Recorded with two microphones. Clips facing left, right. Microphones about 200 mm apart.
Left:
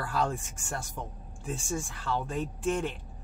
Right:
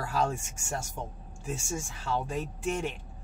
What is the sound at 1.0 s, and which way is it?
Speech, 30° right (ahead or behind).